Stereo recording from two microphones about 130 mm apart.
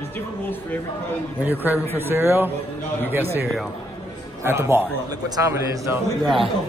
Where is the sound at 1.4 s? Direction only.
15° right (ahead or behind).